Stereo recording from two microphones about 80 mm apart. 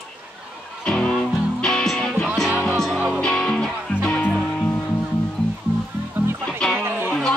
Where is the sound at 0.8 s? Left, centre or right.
Centre.